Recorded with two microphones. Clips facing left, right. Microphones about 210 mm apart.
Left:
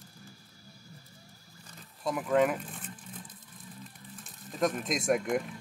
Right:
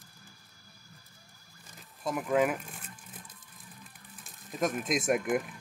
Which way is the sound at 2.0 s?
5° right (ahead or behind).